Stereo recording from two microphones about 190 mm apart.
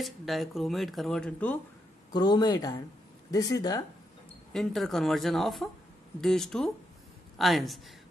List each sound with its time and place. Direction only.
0.0 s speech: centre (ahead or behind)
2.1 s speech: 20° left (ahead or behind)
4.5 s speech: centre (ahead or behind)